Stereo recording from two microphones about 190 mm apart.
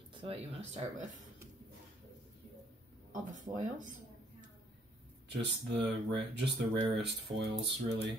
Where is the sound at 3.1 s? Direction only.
40° right (ahead or behind).